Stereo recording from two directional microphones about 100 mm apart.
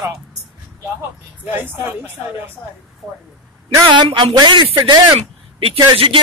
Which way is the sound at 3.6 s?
55° right (ahead or behind).